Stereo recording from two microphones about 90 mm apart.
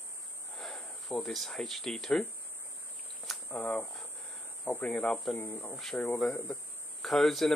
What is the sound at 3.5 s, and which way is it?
Speech, 20° left (ahead or behind).